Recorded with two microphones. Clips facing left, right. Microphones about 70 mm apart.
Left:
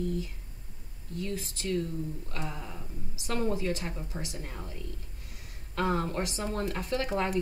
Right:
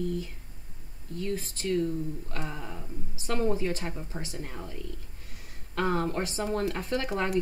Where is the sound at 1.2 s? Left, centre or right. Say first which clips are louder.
Right 3 dB; right.